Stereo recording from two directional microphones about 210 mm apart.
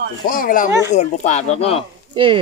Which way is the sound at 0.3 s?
40° left (ahead or behind).